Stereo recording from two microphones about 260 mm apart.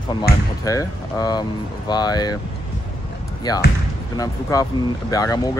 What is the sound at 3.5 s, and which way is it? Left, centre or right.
Speech, centre.